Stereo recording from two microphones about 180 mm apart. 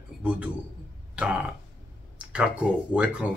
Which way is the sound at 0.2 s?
5° right (ahead or behind).